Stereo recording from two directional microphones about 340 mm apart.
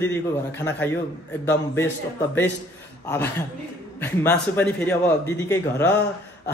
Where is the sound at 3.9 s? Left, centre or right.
Centre.